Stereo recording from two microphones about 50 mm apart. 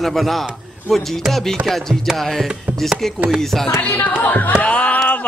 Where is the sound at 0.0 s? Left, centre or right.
Centre.